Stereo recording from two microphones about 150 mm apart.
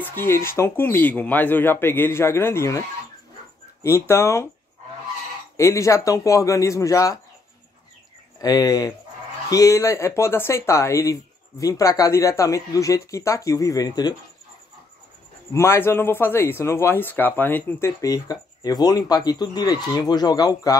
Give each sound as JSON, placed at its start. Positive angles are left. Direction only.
{"t": 0.0, "sound": "speech", "side_deg": 15}
{"t": 3.8, "sound": "speech", "side_deg": 15}
{"t": 5.6, "sound": "speech", "side_deg": 20}
{"t": 8.4, "sound": "speech", "side_deg": 25}
{"t": 15.5, "sound": "speech", "side_deg": 15}